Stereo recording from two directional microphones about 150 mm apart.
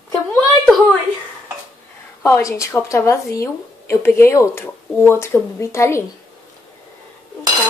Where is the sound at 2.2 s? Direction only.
20° left (ahead or behind).